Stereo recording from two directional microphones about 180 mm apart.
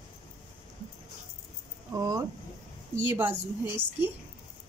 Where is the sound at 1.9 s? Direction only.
20° right (ahead or behind).